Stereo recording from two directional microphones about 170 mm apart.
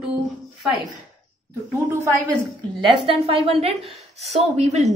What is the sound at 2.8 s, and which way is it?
A woman's voice, 35° right (ahead or behind).